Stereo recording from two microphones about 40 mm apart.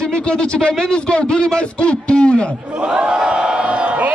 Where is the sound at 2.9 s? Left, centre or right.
Right.